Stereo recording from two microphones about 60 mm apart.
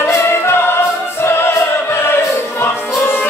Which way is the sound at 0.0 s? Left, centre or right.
Left.